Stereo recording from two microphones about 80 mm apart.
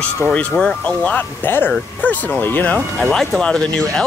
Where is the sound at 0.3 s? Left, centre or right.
Centre.